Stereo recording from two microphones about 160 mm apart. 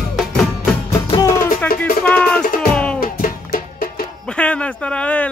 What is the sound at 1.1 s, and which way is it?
Music, 20° left (ahead or behind).